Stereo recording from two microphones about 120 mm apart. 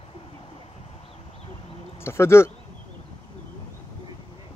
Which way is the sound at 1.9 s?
20° left (ahead or behind).